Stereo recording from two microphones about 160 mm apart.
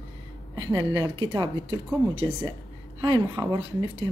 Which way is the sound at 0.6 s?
25° right (ahead or behind).